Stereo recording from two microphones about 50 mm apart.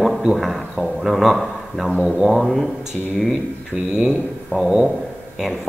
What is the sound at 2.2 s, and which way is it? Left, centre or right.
Speech, centre.